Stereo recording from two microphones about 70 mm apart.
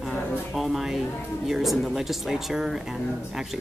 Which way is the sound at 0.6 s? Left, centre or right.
Centre.